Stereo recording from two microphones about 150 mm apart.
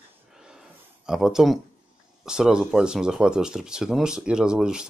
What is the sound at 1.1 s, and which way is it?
Speech, 5° right (ahead or behind).